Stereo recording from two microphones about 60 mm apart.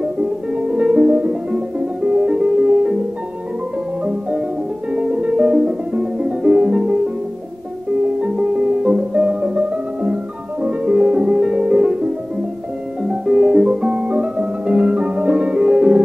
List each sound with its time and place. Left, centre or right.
0.0 s music: centre
4.0 s music: centre
8.2 s music: centre